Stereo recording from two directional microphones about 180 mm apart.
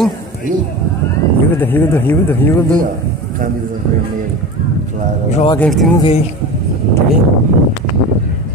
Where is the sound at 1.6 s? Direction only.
10° left (ahead or behind).